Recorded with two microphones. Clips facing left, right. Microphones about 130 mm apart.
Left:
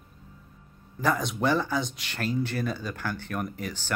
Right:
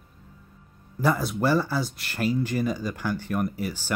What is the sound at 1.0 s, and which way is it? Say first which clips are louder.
Speech: right 2 dB; 10° right (ahead or behind).